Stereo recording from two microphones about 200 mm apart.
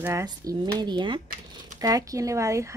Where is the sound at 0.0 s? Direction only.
15° right (ahead or behind).